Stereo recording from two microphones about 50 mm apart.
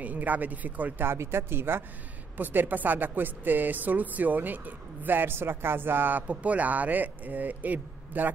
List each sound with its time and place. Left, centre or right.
0.0 s a woman's voice: right
1.0 s speech: right
2.3 s a woman's voice: right